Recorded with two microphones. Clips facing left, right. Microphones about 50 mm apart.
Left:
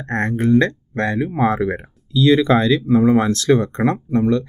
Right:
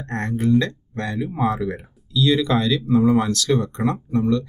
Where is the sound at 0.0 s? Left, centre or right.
Left.